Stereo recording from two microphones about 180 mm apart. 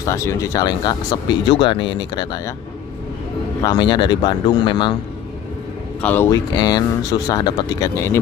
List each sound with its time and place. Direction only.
0.0 s speech: 15° left (ahead or behind)
3.6 s speech: 25° left (ahead or behind)
5.9 s speech: 10° left (ahead or behind)
6.3 s speech: 20° left (ahead or behind)